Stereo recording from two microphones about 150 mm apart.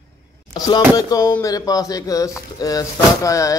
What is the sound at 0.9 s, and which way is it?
Speech, 25° left (ahead or behind).